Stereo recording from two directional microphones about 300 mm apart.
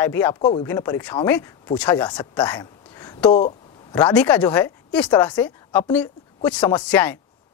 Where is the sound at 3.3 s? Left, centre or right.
Centre.